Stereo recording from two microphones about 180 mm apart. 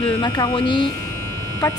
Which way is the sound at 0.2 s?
25° left (ahead or behind).